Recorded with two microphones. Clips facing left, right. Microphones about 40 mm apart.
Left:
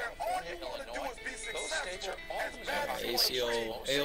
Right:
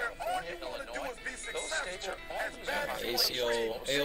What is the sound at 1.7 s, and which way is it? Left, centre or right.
Music, centre.